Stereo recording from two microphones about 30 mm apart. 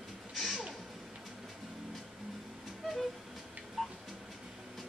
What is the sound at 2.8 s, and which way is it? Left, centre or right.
Train, centre.